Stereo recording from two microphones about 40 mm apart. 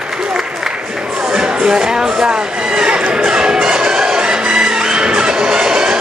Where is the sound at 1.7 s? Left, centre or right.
Centre.